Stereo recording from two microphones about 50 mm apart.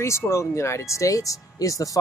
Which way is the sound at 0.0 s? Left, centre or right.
Left.